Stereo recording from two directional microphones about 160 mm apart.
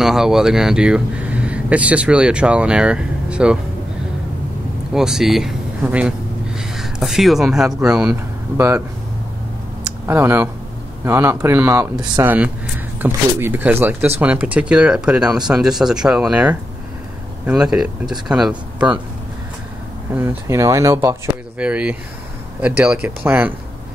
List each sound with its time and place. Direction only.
0.0 s speech: 5° right (ahead or behind)
4.9 s speech: 5° right (ahead or behind)
8.1 s speech: 20° right (ahead or behind)
9.8 s speech: 15° right (ahead or behind)
20.2 s speech: 15° right (ahead or behind)
21.5 s speech: 10° right (ahead or behind)